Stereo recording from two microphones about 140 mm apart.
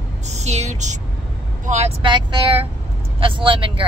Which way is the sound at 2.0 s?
35° right (ahead or behind).